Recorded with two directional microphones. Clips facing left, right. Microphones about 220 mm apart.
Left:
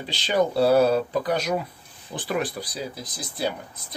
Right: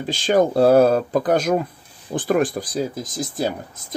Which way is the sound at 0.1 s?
45° right (ahead or behind).